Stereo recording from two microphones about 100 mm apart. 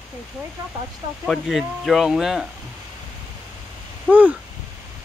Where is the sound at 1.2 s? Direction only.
Centre (ahead or behind).